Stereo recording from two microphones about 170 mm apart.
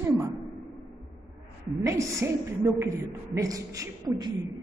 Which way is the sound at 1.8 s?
20° right (ahead or behind).